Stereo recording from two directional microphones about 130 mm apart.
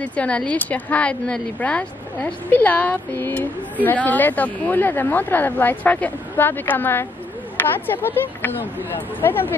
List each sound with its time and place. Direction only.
0.0 s speech: 10° left (ahead or behind)